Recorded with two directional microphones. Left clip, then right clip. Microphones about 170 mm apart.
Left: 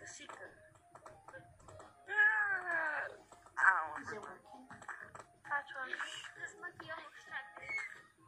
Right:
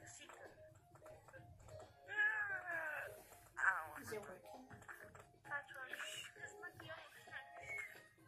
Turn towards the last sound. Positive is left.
turn(degrees=20)  # may be behind; listen again after turning